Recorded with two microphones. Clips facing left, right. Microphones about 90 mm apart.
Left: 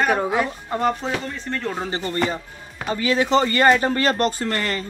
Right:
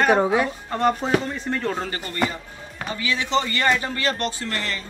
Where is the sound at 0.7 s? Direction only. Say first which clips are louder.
Left 1 dB; 15° left (ahead or behind).